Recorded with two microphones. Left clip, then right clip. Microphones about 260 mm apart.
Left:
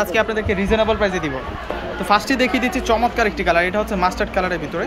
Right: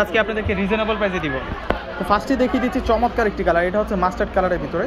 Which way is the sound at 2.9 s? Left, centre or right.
Centre.